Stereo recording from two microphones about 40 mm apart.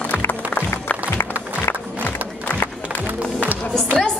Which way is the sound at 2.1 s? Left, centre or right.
Left.